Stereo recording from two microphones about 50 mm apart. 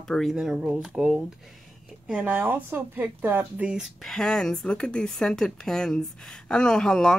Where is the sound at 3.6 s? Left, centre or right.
Centre.